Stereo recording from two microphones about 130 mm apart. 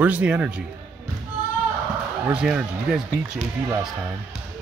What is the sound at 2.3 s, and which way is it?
Speech, 5° right (ahead or behind).